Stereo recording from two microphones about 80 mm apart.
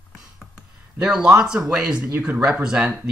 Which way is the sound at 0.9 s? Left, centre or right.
Centre.